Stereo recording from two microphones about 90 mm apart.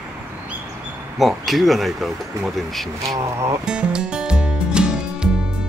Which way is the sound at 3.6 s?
10° right (ahead or behind).